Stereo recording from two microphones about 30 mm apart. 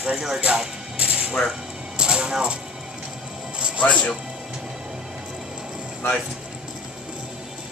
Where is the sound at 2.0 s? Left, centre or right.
Right.